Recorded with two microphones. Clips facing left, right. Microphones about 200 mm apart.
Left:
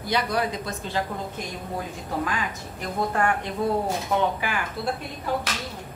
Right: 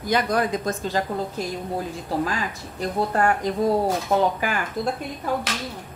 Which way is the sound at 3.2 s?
40° right (ahead or behind).